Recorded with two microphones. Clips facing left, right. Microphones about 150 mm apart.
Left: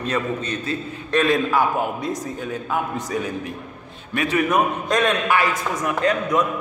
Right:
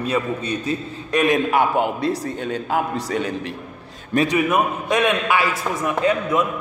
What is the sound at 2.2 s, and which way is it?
A man's voice, 75° right (ahead or behind).